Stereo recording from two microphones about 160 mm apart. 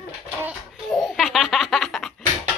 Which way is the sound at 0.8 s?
Centre (ahead or behind).